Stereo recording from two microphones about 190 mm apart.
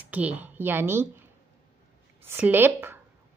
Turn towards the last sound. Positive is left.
turn(degrees=-10)  # may be behind; listen again after turning